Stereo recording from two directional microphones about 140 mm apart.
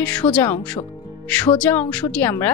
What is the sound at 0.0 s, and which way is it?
Speech, 10° left (ahead or behind).